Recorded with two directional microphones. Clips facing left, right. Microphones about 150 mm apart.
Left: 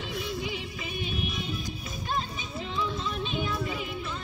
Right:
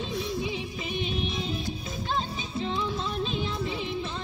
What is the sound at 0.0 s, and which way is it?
Music, 25° right (ahead or behind).